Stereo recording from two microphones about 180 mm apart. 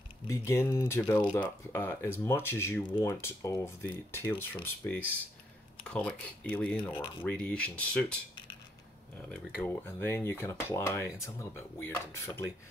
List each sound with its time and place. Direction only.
0.3 s speech: 15° left (ahead or behind)
6.8 s speech: 25° left (ahead or behind)
7.2 s speech: 5° left (ahead or behind)
9.3 s speech: 10° left (ahead or behind)